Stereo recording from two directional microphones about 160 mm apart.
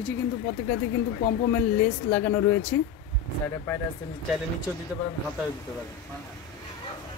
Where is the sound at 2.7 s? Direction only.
10° left (ahead or behind).